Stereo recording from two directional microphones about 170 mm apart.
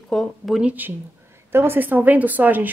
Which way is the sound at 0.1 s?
Centre (ahead or behind).